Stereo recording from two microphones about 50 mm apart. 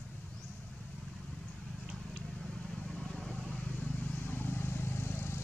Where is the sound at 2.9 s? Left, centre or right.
Centre.